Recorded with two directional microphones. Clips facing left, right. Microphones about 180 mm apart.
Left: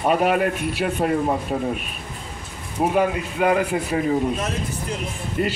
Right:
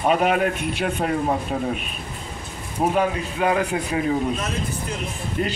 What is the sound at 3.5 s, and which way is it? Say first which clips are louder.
Speech: left 2 dB; 5° left (ahead or behind).